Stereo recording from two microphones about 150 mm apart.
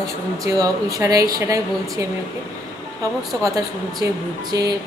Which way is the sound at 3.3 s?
25° right (ahead or behind).